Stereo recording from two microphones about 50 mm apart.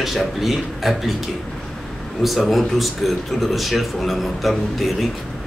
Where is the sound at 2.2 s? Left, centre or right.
Centre.